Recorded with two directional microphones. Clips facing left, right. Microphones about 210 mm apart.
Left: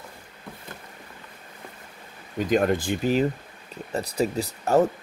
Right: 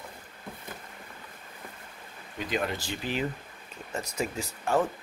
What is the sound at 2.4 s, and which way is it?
Speech, 45° left (ahead or behind).